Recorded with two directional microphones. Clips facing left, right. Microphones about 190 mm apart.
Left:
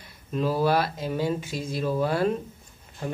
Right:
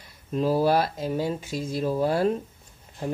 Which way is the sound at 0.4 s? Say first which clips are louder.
Right 2 dB; 40° right (ahead or behind).